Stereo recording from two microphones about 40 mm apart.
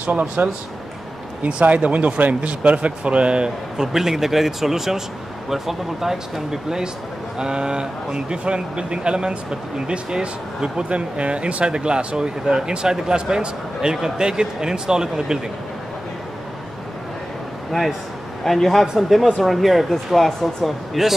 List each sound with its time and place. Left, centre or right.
0.0 s speech: right; by 15.4 s centre
18.4 s speech: centre